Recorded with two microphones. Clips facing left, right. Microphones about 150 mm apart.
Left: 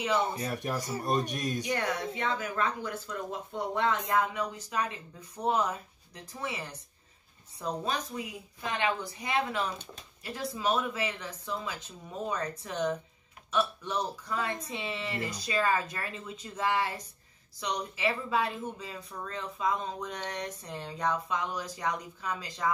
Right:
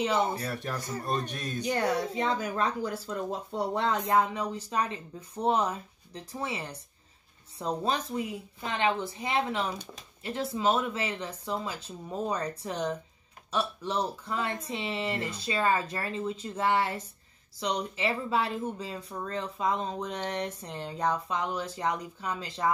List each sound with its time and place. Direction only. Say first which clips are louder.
0.5 s speech: left 1 dB; 15° left (ahead or behind)
1.6 s speech: right 8 dB; 35° right (ahead or behind)